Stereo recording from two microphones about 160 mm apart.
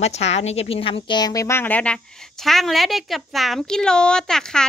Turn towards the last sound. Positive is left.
turn(degrees=5)  # may be behind; listen again after turning